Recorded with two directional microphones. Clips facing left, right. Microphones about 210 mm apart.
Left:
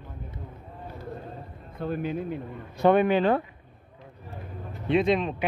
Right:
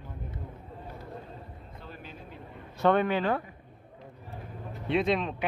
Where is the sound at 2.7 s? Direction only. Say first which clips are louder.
Left 4 dB; 15° left (ahead or behind).